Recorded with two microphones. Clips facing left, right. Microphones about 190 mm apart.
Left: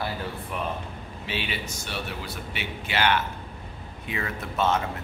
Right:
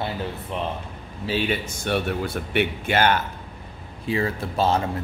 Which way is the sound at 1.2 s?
45° right (ahead or behind).